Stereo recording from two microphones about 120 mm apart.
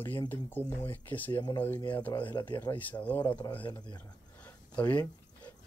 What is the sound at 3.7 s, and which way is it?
Speech, 35° left (ahead or behind).